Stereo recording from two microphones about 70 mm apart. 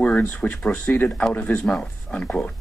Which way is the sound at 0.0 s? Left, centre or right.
Centre.